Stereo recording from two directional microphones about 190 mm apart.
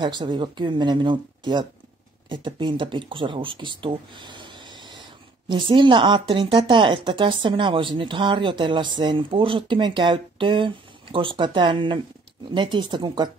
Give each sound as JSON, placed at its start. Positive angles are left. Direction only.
{"t": 0.0, "sound": "speech", "side_deg": -25}